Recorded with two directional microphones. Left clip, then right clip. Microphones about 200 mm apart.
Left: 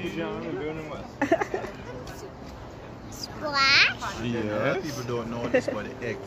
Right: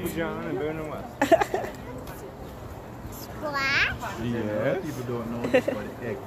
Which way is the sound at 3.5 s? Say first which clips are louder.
Left 5 dB; centre (ahead or behind).